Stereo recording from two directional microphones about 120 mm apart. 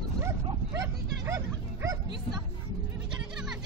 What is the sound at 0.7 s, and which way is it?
Bow-wow, 25° right (ahead or behind).